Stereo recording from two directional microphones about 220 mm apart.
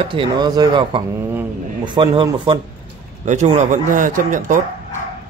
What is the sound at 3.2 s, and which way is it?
Speech, 35° right (ahead or behind).